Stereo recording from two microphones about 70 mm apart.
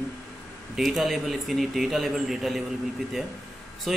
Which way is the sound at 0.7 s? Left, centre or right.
Centre.